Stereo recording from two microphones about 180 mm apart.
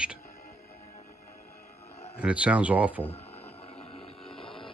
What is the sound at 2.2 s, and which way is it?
Speech, 5° right (ahead or behind).